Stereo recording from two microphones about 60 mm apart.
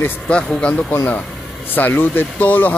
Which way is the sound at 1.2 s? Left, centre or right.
Centre.